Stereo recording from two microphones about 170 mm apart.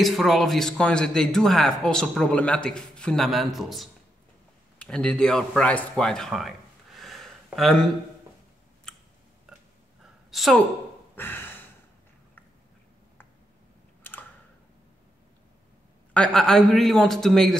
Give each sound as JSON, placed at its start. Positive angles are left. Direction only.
{"t": 0.0, "sound": "a man's voice", "side_deg": 0}
{"t": 10.3, "sound": "a woman's voice", "side_deg": 0}
{"t": 11.1, "sound": "a sound", "side_deg": 10}
{"t": 16.1, "sound": "a man's voice", "side_deg": 5}